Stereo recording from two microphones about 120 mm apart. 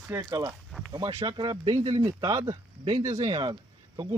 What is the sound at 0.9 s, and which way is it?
Speech, 40° right (ahead or behind).